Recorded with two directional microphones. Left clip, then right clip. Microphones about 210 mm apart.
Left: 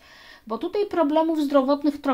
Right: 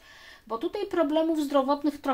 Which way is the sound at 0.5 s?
35° left (ahead or behind).